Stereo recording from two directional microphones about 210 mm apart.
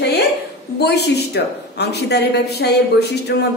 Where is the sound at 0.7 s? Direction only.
50° left (ahead or behind).